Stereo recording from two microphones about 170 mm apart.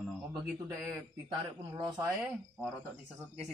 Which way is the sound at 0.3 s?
15° right (ahead or behind).